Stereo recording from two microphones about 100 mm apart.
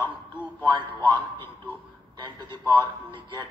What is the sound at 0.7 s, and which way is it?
A woman's voice, 50° right (ahead or behind).